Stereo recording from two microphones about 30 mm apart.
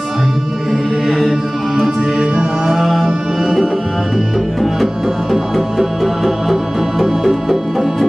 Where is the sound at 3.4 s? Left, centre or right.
Centre.